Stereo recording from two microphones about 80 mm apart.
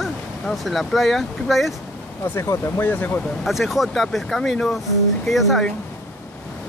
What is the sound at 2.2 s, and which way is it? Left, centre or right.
Speech, left.